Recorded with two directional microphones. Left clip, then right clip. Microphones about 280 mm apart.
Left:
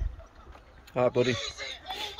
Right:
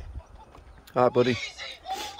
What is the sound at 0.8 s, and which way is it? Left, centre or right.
Speech, centre.